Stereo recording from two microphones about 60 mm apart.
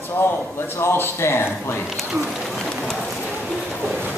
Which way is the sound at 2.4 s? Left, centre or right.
Centre.